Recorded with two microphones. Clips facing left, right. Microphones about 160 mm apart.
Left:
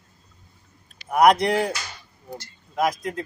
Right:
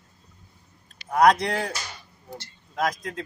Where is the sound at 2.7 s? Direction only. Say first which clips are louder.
Left 3 dB; 10° left (ahead or behind).